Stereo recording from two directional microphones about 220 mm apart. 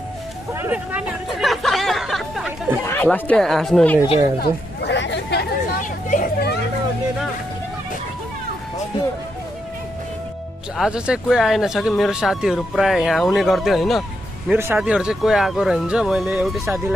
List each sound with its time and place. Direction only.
0.5 s hubbub: 10° right (ahead or behind)
2.9 s speech: 10° left (ahead or behind)
4.4 s chatter: 50° left (ahead or behind)
6.0 s a sound: 40° left (ahead or behind)
10.8 s speech: 5° right (ahead or behind)